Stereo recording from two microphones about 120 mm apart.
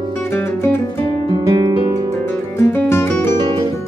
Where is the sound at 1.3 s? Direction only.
35° right (ahead or behind).